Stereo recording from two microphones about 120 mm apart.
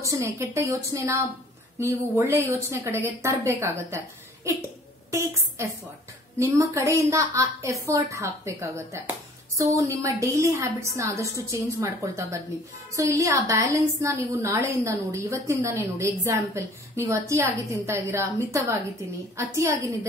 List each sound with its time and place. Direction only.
0.0 s a woman's voice: 25° right (ahead or behind)
6.4 s a woman's voice: 25° right (ahead or behind)